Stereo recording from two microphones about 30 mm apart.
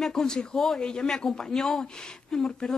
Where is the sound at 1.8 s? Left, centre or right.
Left.